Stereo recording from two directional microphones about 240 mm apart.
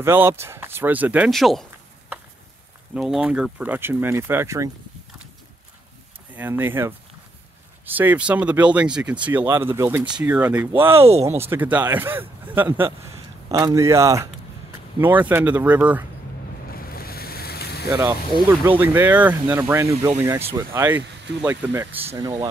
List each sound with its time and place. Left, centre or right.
0.0 s speech: centre
6.3 s speech: centre
16.7 s boat: left
17.8 s speech: centre